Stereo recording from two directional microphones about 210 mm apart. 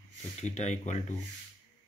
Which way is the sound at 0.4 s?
35° left (ahead or behind).